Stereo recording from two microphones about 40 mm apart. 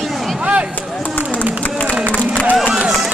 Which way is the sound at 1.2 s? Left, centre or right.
Left.